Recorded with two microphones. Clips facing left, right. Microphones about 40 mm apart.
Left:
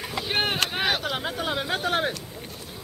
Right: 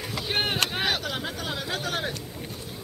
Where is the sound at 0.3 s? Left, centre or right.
Centre.